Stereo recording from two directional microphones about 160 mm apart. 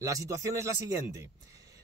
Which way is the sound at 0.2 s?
20° right (ahead or behind).